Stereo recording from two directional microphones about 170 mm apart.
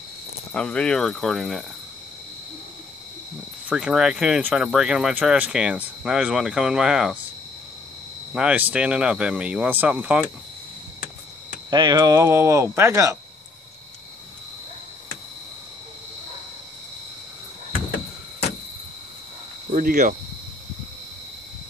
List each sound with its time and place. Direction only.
0.5 s speech: 5° left (ahead or behind)
3.6 s speech: 5° right (ahead or behind)
8.4 s speech: 5° right (ahead or behind)
11.7 s speech: 25° right (ahead or behind)
19.7 s cricket: 55° right (ahead or behind)